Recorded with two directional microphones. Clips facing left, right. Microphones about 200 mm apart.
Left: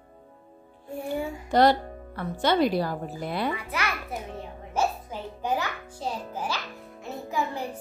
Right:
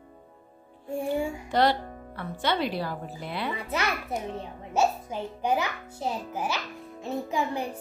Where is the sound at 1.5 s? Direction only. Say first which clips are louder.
Left 5 dB; 45° left (ahead or behind).